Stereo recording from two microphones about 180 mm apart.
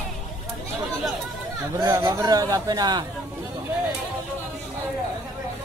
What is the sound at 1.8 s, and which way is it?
A man's voice, 20° right (ahead or behind).